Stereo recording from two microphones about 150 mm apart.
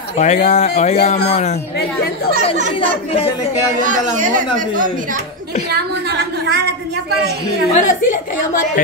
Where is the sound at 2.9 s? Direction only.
40° left (ahead or behind).